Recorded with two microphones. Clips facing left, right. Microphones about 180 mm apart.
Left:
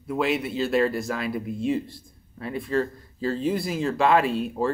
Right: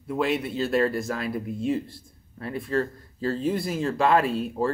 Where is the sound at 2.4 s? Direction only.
45° right (ahead or behind).